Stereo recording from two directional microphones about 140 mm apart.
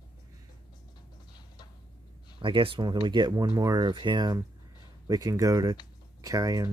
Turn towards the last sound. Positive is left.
turn(degrees=-25)  # may be behind; listen again after turning